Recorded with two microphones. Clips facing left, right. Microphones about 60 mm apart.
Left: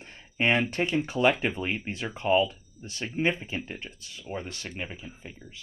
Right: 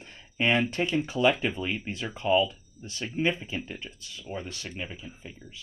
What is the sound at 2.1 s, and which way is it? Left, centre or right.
Speech, left.